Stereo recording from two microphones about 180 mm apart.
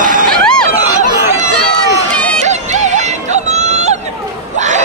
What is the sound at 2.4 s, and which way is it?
Music, 40° right (ahead or behind).